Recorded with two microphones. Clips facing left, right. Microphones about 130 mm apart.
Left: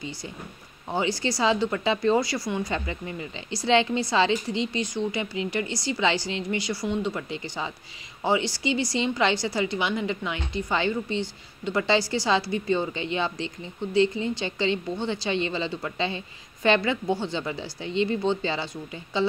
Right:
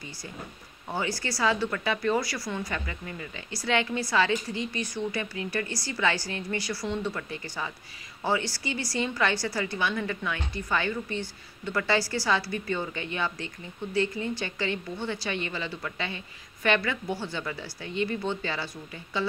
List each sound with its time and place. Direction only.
0.8 s a woman's voice: 20° left (ahead or behind)